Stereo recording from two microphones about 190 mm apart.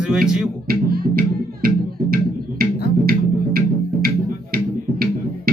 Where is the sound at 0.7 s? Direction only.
50° right (ahead or behind).